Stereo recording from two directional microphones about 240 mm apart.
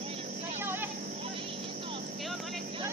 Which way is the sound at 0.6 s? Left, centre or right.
Centre.